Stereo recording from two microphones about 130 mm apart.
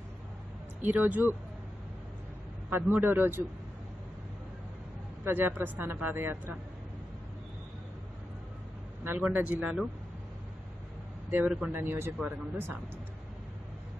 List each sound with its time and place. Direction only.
0.8 s a man's voice: 15° right (ahead or behind)
2.7 s a man's voice: 15° right (ahead or behind)
5.2 s a man's voice: 15° right (ahead or behind)
9.0 s a man's voice: 15° right (ahead or behind)
11.2 s a man's voice: 15° right (ahead or behind)